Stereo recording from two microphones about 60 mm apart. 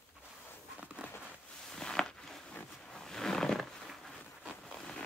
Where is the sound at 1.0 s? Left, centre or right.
Centre.